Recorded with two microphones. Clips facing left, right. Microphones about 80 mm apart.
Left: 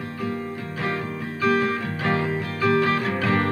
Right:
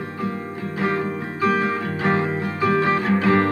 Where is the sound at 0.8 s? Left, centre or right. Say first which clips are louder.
Right 5 dB; right.